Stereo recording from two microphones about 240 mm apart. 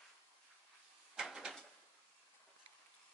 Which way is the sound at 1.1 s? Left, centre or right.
Centre.